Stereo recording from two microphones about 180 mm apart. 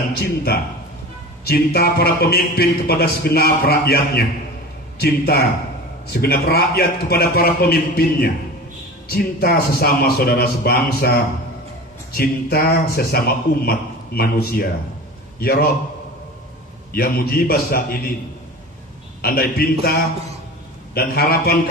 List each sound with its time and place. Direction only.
0.2 s a man's voice: 60° left (ahead or behind)
16.9 s a man's voice: 55° left (ahead or behind)
19.2 s a man's voice: 55° left (ahead or behind)